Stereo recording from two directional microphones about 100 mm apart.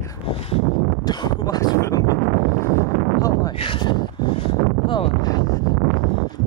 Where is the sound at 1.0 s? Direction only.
45° left (ahead or behind).